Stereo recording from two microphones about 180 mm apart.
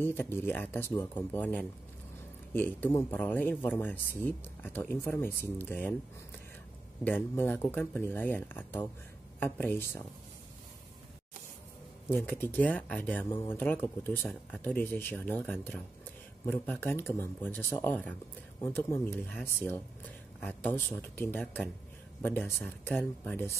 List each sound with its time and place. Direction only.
0.0 s speech: 10° left (ahead or behind)
7.1 s speech: 10° left (ahead or behind)
12.3 s speech: 10° left (ahead or behind)